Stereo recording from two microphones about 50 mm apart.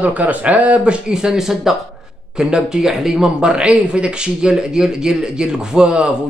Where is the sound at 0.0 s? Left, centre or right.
Right.